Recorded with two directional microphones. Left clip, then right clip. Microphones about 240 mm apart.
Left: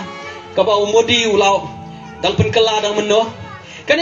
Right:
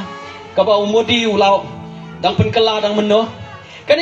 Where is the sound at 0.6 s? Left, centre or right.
Left.